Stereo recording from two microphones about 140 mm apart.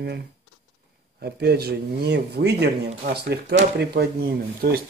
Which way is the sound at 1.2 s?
90° right.